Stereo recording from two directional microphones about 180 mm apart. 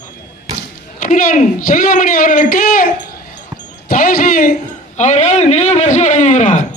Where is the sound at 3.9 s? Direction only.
50° left (ahead or behind).